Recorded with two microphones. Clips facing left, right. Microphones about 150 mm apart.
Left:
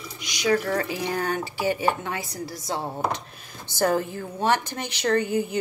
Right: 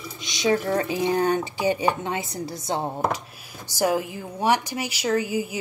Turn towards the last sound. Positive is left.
turn(degrees=-5)  # may be behind; listen again after turning